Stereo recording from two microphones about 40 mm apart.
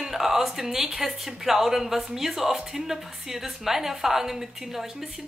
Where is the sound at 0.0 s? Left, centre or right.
Centre.